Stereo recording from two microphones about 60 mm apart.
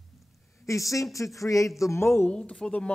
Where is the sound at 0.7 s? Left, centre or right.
Left.